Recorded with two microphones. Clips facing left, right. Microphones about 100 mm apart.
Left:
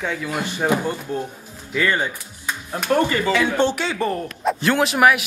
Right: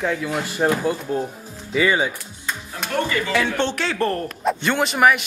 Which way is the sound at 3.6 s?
5° left (ahead or behind).